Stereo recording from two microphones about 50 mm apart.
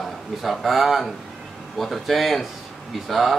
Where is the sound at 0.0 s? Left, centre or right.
Centre.